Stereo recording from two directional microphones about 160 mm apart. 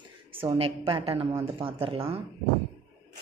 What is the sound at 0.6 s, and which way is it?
Speech, 35° right (ahead or behind).